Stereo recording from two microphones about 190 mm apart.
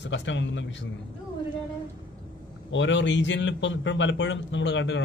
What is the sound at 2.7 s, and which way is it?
Speech, 75° left (ahead or behind).